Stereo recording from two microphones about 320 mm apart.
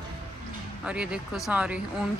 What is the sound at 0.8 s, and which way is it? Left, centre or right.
Speech, centre.